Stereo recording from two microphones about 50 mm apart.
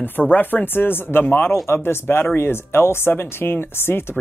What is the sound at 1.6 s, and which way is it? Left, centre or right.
Speech, left.